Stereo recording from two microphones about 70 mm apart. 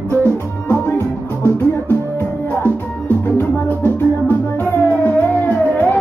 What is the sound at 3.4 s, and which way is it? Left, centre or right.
Music, left.